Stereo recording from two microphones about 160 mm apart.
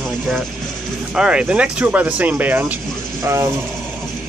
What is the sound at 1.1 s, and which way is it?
Speech, 5° right (ahead or behind).